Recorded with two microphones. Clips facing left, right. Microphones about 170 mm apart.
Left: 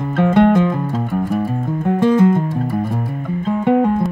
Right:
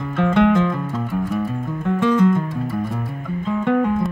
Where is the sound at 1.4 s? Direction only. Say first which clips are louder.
Left 4 dB; 40° left (ahead or behind).